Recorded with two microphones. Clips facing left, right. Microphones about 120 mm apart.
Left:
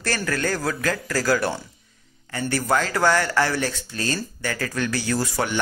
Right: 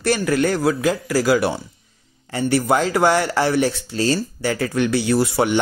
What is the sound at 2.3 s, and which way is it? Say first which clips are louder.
Speech: right 5 dB; 25° right (ahead or behind).